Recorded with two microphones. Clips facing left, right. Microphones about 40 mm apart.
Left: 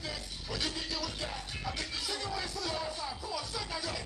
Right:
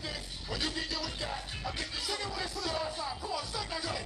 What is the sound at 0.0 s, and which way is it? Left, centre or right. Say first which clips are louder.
Music: even; centre.